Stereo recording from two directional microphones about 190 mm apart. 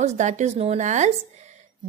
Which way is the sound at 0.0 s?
40° right (ahead or behind).